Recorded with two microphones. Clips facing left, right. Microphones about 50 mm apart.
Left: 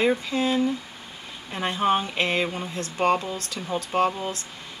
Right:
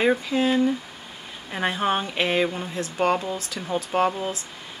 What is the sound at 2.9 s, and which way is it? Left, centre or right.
Speech, centre.